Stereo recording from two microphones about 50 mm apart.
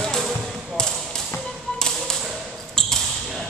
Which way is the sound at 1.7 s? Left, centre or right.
Centre.